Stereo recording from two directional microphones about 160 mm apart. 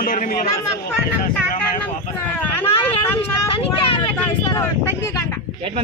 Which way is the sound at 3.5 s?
35° left (ahead or behind).